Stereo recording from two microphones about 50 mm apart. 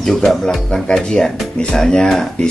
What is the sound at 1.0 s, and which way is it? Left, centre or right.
Speech, centre.